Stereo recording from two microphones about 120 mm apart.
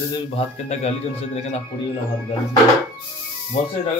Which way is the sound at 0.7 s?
65° left (ahead or behind).